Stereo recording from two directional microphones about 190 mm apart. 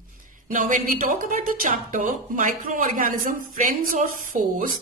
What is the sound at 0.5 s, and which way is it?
A woman's voice, 45° right (ahead or behind).